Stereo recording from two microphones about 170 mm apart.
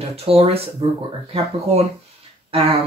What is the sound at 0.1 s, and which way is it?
Speech, 35° right (ahead or behind).